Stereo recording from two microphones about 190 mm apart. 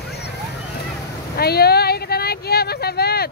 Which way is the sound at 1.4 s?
55° left (ahead or behind).